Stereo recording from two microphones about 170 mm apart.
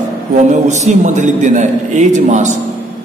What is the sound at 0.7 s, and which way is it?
A man's voice, 45° right (ahead or behind).